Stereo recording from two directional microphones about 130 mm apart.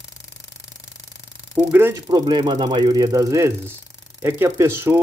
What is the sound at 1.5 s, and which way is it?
Speech, 15° right (ahead or behind).